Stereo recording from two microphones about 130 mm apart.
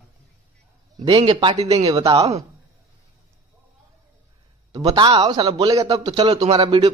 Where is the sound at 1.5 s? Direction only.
55° right (ahead or behind).